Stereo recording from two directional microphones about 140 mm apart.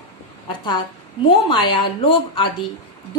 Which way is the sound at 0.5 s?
35° left (ahead or behind).